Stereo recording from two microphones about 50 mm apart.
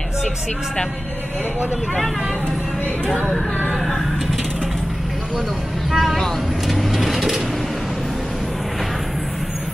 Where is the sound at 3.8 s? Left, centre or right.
Centre.